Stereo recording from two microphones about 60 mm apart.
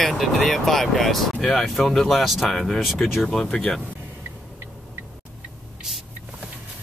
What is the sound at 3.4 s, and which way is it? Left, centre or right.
Speech, centre.